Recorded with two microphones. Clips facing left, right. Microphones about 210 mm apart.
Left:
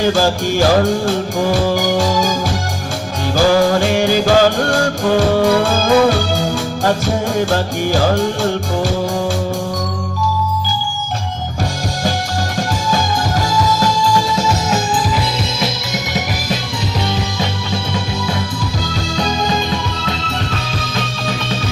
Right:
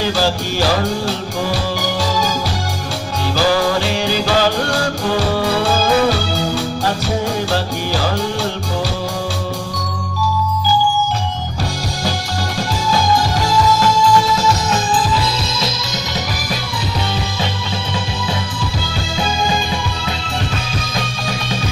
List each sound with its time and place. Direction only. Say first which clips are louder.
0.0 s music: left 3 dB; 50° left (ahead or behind)
3.3 s music: left 4 dB; 50° left (ahead or behind)